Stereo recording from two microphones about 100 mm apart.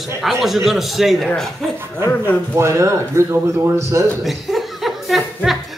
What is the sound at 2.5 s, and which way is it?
Speech, 30° right (ahead or behind).